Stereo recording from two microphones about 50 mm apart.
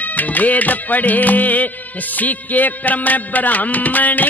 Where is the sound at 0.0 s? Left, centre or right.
Left.